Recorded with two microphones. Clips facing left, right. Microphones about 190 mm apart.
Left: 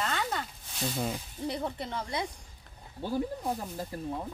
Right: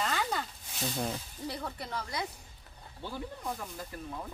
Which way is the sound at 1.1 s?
20° left (ahead or behind).